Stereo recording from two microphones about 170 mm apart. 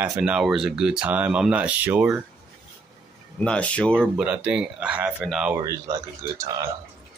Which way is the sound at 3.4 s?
5° left (ahead or behind).